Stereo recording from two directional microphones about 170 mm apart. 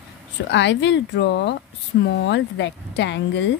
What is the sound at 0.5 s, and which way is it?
Speech, 90° left.